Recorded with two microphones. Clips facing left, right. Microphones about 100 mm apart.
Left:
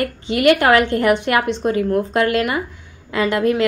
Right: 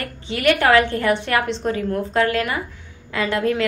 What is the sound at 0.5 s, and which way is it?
A woman's voice, 15° left (ahead or behind).